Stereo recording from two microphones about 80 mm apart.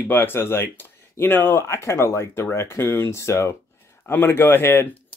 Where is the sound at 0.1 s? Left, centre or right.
Left.